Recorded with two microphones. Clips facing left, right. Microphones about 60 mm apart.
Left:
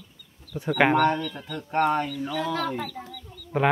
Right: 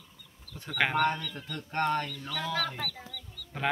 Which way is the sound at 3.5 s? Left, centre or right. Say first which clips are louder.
Left 9 dB; left.